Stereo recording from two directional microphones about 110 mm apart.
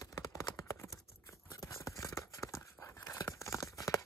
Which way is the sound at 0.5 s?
30° left (ahead or behind).